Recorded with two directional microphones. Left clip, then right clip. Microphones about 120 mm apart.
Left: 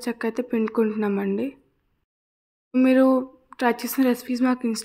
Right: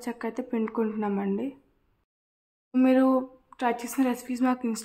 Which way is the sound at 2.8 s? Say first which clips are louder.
Left 4 dB; 30° left (ahead or behind).